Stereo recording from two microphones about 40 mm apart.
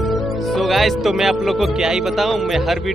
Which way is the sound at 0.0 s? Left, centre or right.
Centre.